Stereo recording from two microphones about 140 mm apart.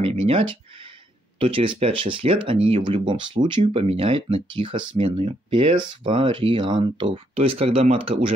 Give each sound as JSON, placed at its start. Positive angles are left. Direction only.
{"t": 0.0, "sound": "speech", "side_deg": -45}
{"t": 3.6, "sound": "speech", "side_deg": -45}